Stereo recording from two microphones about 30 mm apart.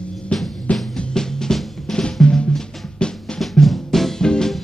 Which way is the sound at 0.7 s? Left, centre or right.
Left.